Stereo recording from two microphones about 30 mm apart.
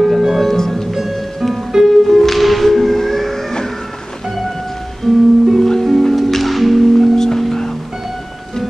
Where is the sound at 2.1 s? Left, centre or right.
Centre.